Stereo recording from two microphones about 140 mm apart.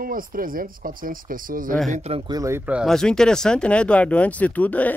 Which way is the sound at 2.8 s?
5° left (ahead or behind).